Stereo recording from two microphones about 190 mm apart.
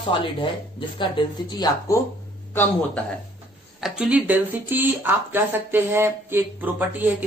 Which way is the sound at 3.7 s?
5° right (ahead or behind).